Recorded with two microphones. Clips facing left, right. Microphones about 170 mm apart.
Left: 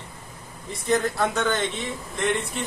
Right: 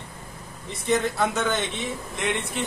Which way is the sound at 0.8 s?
Centre (ahead or behind).